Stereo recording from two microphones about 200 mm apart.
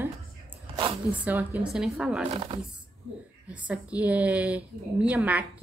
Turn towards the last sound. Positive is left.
turn(degrees=-5)  # may be behind; listen again after turning